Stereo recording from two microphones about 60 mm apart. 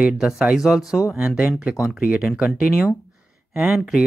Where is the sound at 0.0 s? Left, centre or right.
Centre.